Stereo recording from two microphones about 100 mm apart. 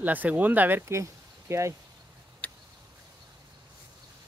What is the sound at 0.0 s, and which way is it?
Speech, 15° right (ahead or behind).